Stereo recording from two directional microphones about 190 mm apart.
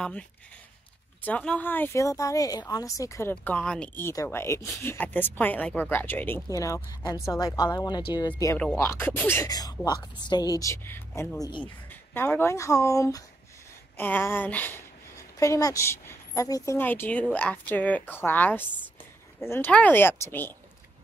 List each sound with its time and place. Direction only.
1.2 s a woman's voice: 5° left (ahead or behind)